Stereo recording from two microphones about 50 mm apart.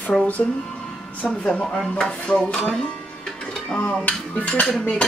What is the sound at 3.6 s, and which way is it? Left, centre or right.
Speech, left.